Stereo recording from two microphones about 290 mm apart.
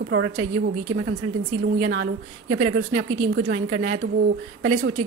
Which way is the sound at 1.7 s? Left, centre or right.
Right.